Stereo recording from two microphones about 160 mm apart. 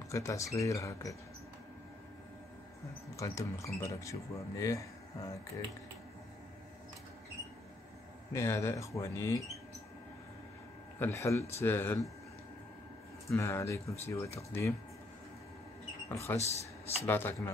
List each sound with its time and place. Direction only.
0.1 s speech: 20° left (ahead or behind)
3.2 s speech: 20° left (ahead or behind)
8.3 s speech: 20° left (ahead or behind)
11.0 s speech: 15° left (ahead or behind)
13.3 s speech: 15° left (ahead or behind)
16.1 s speech: 15° left (ahead or behind)
16.3 s speech: 40° left (ahead or behind)
17.0 s speech: 15° left (ahead or behind)